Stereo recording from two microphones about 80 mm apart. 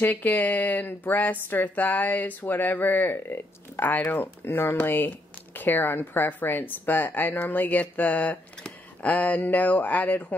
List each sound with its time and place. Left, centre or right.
0.0 s a woman's voice: left